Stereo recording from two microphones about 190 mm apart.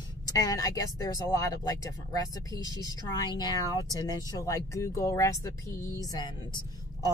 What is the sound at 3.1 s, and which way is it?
Speech, 20° left (ahead or behind).